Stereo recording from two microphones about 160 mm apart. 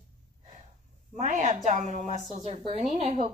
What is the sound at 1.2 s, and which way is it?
Speech, 50° right (ahead or behind).